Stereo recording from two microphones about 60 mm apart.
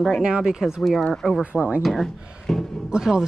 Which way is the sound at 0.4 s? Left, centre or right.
Centre.